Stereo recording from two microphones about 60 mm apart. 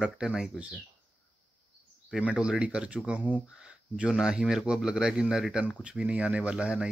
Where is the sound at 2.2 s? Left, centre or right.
Centre.